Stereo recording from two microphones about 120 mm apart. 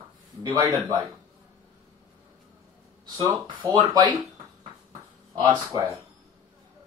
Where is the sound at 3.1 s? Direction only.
40° right (ahead or behind).